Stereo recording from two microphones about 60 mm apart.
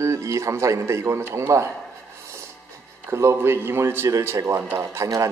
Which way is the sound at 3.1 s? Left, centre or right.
Right.